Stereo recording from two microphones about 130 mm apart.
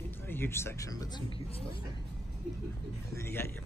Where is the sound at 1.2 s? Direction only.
45° left (ahead or behind).